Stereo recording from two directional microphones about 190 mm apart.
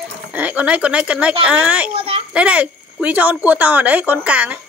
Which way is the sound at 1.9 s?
30° right (ahead or behind).